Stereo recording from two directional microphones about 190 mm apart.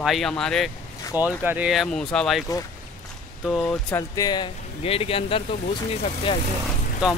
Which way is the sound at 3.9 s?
20° left (ahead or behind).